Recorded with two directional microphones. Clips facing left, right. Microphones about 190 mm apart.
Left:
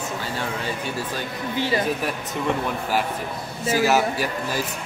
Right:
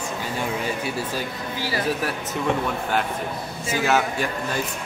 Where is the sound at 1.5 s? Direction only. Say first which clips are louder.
Left 5 dB; 20° left (ahead or behind).